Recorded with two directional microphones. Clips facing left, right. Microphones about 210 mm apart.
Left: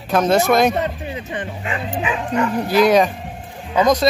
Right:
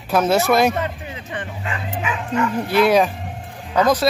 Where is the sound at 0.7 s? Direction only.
20° left (ahead or behind).